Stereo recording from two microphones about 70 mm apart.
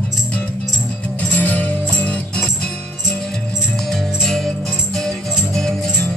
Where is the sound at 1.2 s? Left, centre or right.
Left.